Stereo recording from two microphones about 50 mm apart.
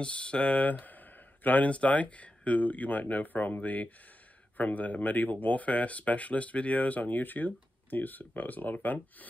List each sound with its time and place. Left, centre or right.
0.0 s speech: left